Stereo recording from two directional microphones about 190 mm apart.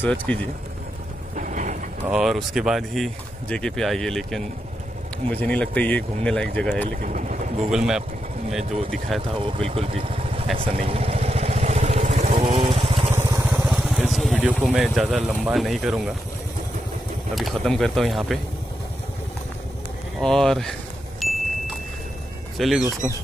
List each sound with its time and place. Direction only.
0.0 s speech: 10° left (ahead or behind)
1.3 s a sound: 40° right (ahead or behind)
2.0 s speech: centre (ahead or behind)
7.0 s vehicle: 45° right (ahead or behind)
7.7 s speech: 5° right (ahead or behind)
9.4 s speech: 30° right (ahead or behind)
10.6 s vehicle: 30° right (ahead or behind)
13.1 s vehicle: 15° right (ahead or behind)
13.5 s vehicle: centre (ahead or behind)
14.6 s speech: centre (ahead or behind)
17.4 s speech: centre (ahead or behind)
20.2 s speech: centre (ahead or behind)
21.2 s vehicle: centre (ahead or behind)
22.6 s speech: centre (ahead or behind)